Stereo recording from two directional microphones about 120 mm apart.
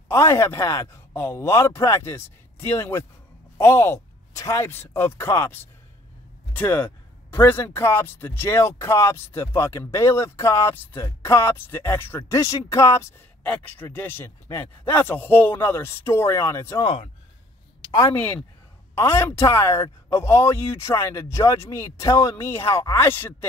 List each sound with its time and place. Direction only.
0.1 s speech: 25° left (ahead or behind)
13.4 s speech: 15° left (ahead or behind)
18.1 s speech: 15° left (ahead or behind)